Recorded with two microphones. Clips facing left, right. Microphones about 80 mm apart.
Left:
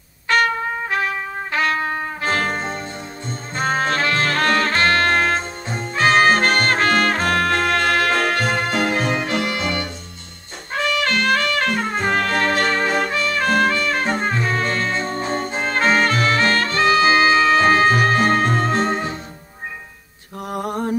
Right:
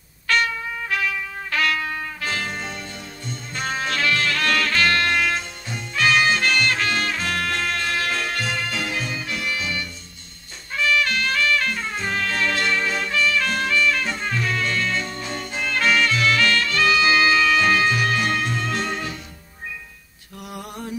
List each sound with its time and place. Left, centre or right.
0.3 s trumpet: left
2.3 s music: left
9.1 s music: left
20.4 s lullaby: left